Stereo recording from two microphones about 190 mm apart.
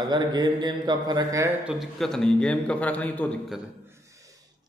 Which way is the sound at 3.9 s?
15° right (ahead or behind).